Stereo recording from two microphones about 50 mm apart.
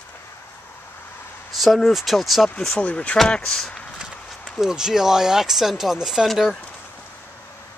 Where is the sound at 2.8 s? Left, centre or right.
Left.